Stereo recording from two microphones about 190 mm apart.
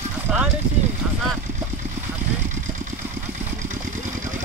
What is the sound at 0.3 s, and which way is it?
Speech, 5° right (ahead or behind).